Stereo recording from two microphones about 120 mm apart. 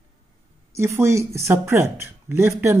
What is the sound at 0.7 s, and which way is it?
Speech, 20° right (ahead or behind).